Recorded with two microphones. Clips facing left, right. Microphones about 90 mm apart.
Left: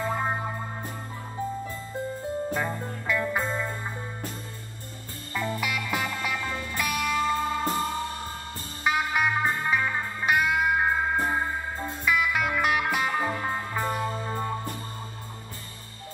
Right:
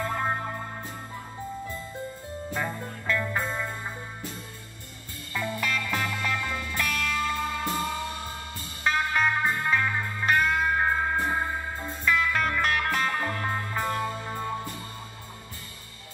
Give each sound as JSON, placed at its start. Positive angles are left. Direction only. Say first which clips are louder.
{"t": 0.0, "sound": "music", "louder": "left 1 dB", "side_deg": 10}
{"t": 2.5, "sound": "music", "louder": "left 2 dB", "side_deg": 10}
{"t": 5.3, "sound": "music", "louder": "left 1 dB", "side_deg": 25}
{"t": 5.6, "sound": "music", "louder": "even", "side_deg": 10}
{"t": 6.4, "sound": "music", "louder": "even", "side_deg": 20}
{"t": 8.8, "sound": "music", "louder": "even", "side_deg": 10}
{"t": 14.0, "sound": "music", "louder": "left 2 dB", "side_deg": 25}